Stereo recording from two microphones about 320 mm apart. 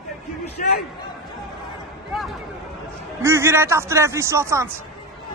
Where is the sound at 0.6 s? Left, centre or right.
Left.